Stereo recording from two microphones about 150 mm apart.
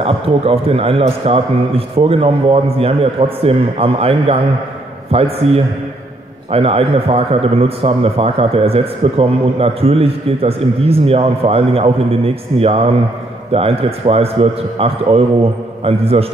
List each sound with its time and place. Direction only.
0.0 s a man's voice: 40° right (ahead or behind)